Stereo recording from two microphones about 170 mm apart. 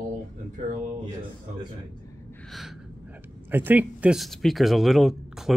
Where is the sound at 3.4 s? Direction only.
10° right (ahead or behind).